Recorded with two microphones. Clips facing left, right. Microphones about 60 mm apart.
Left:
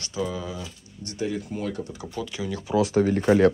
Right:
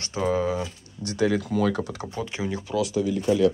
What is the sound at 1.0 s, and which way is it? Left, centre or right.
Speech, right.